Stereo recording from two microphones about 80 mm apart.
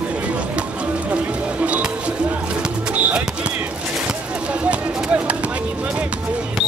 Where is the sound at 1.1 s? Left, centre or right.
Centre.